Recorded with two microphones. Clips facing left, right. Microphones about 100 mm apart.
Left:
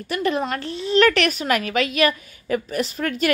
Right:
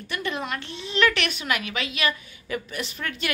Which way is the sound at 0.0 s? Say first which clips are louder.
Left 7 dB; 35° left (ahead or behind).